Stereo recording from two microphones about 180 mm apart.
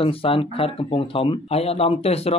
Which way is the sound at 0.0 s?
30° left (ahead or behind).